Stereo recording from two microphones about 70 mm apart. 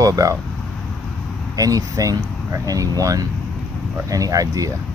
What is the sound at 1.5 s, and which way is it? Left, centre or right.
Speech, right.